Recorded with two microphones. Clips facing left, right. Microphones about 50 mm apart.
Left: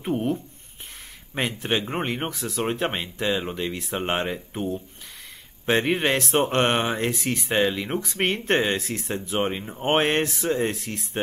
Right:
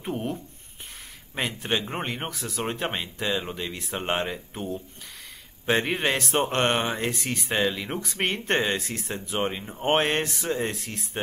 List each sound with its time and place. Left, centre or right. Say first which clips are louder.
0.0 s speech: left 5 dB; centre